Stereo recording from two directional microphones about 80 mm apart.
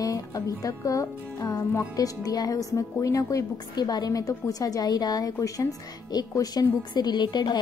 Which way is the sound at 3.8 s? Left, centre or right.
Left.